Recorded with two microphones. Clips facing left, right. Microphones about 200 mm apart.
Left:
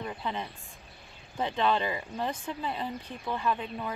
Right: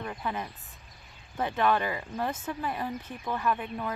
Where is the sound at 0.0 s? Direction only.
20° left (ahead or behind).